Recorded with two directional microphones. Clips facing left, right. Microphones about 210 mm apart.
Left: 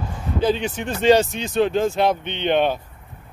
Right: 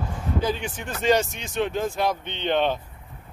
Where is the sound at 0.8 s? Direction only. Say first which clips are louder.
Left 5 dB; 30° left (ahead or behind).